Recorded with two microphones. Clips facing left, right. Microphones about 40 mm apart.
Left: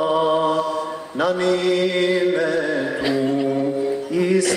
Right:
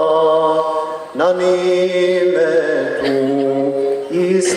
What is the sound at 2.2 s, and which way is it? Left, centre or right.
Music, centre.